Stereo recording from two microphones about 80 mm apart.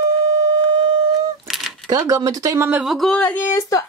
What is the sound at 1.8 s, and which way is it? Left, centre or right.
Speech, right.